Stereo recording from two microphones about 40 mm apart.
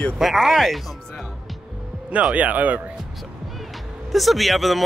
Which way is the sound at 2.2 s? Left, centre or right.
Right.